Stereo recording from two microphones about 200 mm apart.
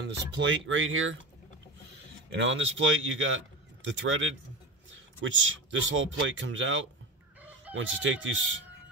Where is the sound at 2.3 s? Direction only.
70° right (ahead or behind).